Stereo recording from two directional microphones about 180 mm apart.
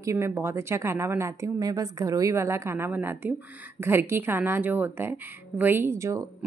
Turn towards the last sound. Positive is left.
turn(degrees=-15)  # may be behind; listen again after turning